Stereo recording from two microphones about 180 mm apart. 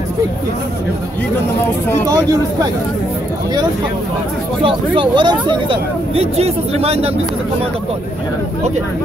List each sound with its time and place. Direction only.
2.0 s speech: 20° right (ahead or behind)
4.6 s speech: 30° right (ahead or behind)